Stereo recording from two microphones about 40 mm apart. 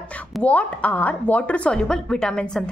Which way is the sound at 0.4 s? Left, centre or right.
Left.